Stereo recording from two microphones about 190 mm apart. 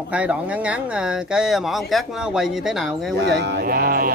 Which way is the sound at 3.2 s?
65° right (ahead or behind).